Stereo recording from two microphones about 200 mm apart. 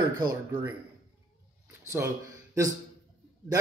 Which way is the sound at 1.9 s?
15° right (ahead or behind).